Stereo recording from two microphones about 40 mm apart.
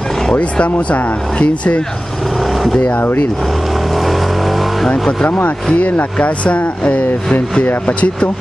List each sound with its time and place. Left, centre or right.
0.3 s speech: left
3.9 s vehicle: centre
6.1 s speech: left